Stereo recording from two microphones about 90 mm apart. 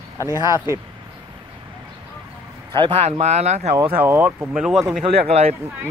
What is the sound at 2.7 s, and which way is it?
Speech, 60° right (ahead or behind).